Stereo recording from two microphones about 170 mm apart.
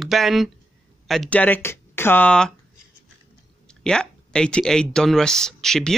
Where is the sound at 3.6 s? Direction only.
5° left (ahead or behind).